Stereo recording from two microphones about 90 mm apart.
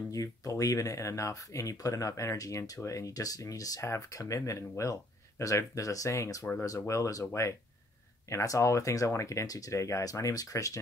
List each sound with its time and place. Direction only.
0.1 s speech: 40° left (ahead or behind)